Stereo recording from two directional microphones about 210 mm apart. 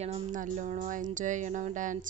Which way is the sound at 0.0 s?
35° right (ahead or behind).